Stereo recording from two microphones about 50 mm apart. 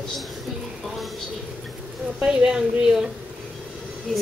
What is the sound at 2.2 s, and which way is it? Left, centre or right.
Speech, centre.